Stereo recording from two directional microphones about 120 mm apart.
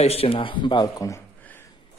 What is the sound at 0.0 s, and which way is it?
Speech, 55° left (ahead or behind).